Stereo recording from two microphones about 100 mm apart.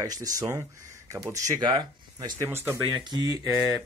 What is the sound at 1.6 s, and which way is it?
Speech, 45° right (ahead or behind).